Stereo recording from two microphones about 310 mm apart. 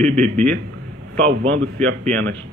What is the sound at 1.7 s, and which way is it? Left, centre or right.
Speech, centre.